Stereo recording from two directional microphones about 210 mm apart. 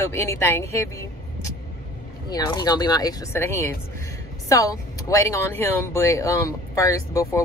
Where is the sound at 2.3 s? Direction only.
20° left (ahead or behind).